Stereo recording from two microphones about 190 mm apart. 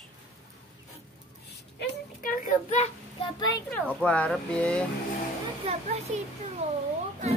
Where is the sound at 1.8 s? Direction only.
45° left (ahead or behind).